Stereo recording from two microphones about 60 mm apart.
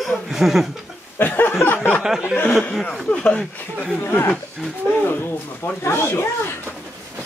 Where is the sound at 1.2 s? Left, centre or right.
Left.